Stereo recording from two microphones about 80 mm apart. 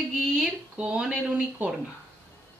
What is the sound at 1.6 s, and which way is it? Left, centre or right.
Speech, right.